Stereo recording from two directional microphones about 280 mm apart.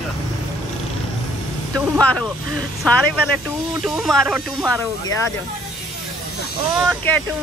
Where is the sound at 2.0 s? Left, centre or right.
Centre.